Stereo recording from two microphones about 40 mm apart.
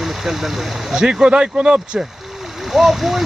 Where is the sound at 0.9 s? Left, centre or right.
Centre.